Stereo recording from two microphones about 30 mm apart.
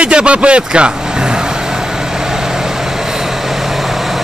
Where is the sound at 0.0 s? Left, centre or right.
Right.